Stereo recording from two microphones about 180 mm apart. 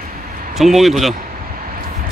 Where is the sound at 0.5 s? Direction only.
Centre (ahead or behind).